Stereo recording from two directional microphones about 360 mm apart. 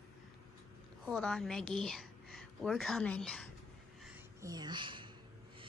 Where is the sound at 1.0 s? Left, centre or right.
Centre.